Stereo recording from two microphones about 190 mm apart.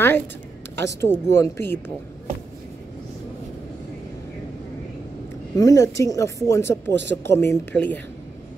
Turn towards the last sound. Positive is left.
turn(degrees=10)  # may be behind; listen again after turning